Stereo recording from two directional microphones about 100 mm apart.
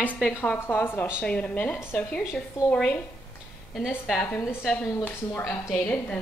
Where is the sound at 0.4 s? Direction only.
20° left (ahead or behind).